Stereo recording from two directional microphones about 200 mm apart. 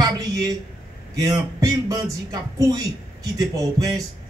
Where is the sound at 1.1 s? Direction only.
15° right (ahead or behind).